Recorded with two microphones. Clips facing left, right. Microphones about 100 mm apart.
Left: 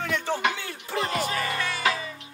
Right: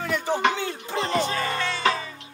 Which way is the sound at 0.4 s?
25° right (ahead or behind).